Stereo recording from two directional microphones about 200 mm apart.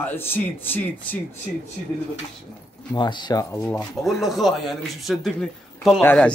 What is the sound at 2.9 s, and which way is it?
Speech, 20° left (ahead or behind).